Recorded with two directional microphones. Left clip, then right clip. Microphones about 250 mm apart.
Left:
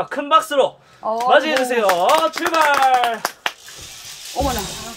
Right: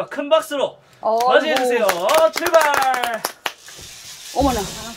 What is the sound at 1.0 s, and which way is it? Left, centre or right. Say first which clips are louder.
Speech: right 3 dB; right.